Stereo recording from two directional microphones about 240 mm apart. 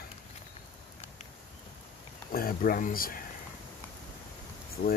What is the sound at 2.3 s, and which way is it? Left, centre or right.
Speech, left.